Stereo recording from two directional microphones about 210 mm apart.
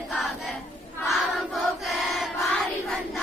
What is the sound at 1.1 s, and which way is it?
Choir, centre (ahead or behind).